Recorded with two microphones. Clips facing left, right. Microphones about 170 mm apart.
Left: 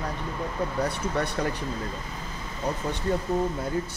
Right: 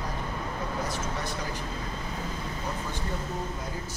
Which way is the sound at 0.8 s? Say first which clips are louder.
Left 5 dB; 65° left (ahead or behind).